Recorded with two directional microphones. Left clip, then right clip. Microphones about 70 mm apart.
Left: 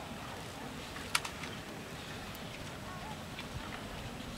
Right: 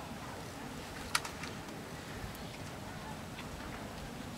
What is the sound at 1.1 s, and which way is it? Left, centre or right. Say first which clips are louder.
Typing: left 1 dB; centre.